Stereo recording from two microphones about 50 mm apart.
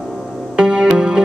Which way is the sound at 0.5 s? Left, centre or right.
Centre.